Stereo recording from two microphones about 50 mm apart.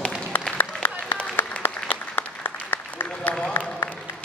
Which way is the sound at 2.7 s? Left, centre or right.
Left.